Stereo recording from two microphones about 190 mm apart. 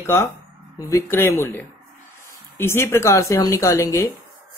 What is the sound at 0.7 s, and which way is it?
A woman's voice, 15° left (ahead or behind).